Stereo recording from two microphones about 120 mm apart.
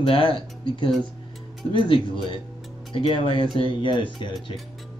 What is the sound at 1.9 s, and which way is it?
Speech, 40° left (ahead or behind).